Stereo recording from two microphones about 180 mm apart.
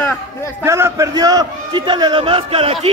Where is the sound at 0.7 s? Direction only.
15° right (ahead or behind).